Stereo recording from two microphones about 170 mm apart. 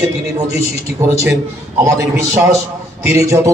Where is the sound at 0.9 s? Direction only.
15° right (ahead or behind).